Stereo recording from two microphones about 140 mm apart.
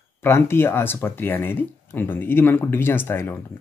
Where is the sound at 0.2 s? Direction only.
15° left (ahead or behind).